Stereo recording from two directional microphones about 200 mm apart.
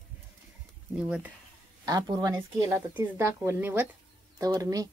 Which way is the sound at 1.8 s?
20° right (ahead or behind).